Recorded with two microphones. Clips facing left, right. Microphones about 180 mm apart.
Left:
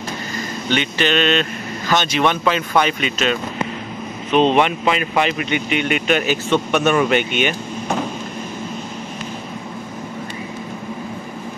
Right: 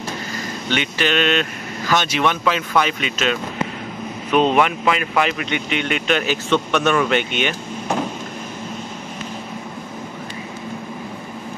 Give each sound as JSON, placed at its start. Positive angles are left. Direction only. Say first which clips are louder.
{"t": 0.7, "sound": "speech", "louder": "left 2 dB", "side_deg": -5}
{"t": 4.6, "sound": "speech", "louder": "left 1 dB", "side_deg": 25}
{"t": 5.2, "sound": "speech", "louder": "left 2 dB", "side_deg": 5}